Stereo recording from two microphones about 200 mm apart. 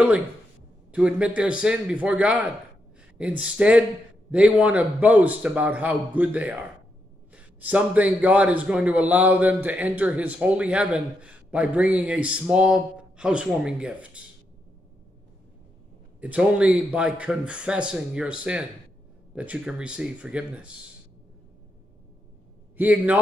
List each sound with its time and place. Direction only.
0.9 s a man's voice: 5° right (ahead or behind)
16.2 s a man's voice: 5° right (ahead or behind)
22.8 s a man's voice: 10° right (ahead or behind)